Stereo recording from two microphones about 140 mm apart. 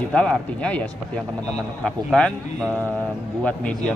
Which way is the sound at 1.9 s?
5° left (ahead or behind).